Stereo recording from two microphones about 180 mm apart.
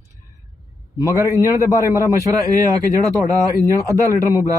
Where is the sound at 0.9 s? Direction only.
15° left (ahead or behind).